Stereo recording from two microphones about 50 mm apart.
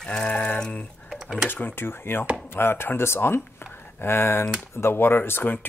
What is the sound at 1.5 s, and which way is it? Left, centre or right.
Speech, left.